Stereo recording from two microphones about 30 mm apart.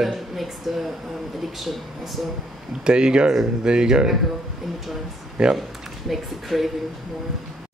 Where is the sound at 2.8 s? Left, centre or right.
Right.